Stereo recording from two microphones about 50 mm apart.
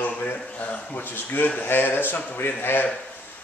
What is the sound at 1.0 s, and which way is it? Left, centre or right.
A man's voice, left.